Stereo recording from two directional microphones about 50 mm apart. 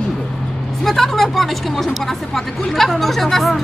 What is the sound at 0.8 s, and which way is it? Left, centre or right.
Speech, centre.